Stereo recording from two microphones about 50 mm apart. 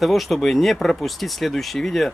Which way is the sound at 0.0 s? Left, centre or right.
Centre.